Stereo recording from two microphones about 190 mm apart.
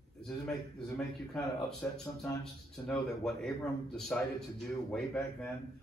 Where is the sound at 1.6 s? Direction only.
5° left (ahead or behind).